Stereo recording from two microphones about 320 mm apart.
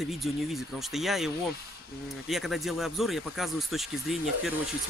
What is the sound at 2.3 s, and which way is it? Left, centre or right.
Speech, centre.